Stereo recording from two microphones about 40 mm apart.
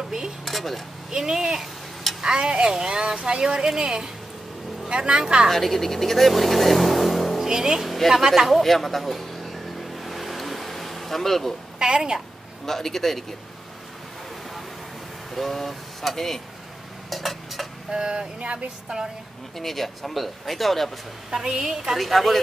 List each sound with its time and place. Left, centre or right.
0.5 s speech: centre
1.1 s speech: centre
5.5 s speech: centre
7.4 s speech: centre
8.1 s a sound: centre
11.8 s a sound: centre
12.6 s speech: centre
15.3 s speech: centre
17.8 s a sound: right
19.6 s speech: centre
21.3 s speech: centre
21.9 s speech: centre